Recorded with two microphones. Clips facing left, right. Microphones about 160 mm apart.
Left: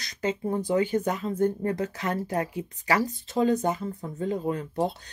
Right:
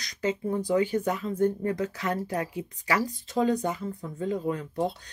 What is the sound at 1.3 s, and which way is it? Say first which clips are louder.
Speech: even; 40° left (ahead or behind).